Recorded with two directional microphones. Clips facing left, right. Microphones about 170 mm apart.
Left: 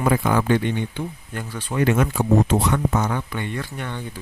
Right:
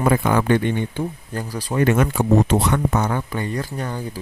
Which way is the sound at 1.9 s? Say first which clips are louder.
Right 1 dB; 60° right (ahead or behind).